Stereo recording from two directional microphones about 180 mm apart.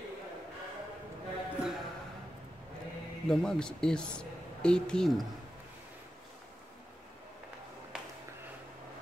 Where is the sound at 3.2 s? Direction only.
5° left (ahead or behind).